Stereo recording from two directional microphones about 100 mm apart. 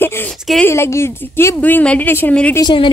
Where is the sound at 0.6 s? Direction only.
25° left (ahead or behind).